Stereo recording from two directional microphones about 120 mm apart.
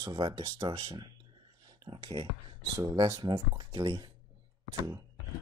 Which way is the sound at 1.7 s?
40° right (ahead or behind).